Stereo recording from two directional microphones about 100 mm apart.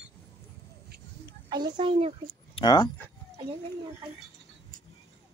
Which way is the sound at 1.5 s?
45° right (ahead or behind).